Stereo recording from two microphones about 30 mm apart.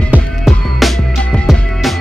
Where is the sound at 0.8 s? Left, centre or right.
Centre.